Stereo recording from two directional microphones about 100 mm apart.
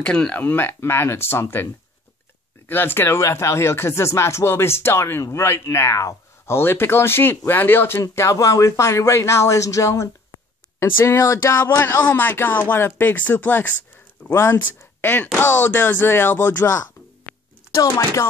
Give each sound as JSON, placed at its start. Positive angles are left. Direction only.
{"t": 0.0, "sound": "speech", "side_deg": 10}
{"t": 2.7, "sound": "speech", "side_deg": 20}